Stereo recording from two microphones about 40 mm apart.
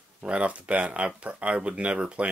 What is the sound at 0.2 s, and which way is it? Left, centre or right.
Speech, right.